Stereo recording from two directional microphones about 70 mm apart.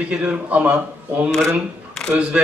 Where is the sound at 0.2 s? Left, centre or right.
Right.